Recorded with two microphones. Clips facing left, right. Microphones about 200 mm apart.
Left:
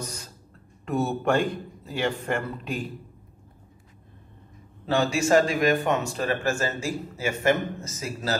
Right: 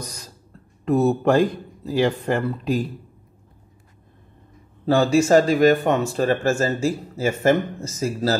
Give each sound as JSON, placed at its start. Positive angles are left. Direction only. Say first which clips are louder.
{"t": 0.8, "sound": "speech", "louder": "right 7 dB", "side_deg": -35}
{"t": 4.8, "sound": "speech", "louder": "right 6 dB", "side_deg": -35}